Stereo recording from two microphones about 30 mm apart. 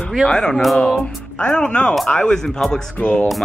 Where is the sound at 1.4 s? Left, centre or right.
Left.